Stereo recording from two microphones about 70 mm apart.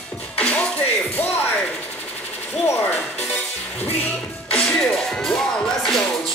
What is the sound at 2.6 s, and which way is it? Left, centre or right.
Music, left.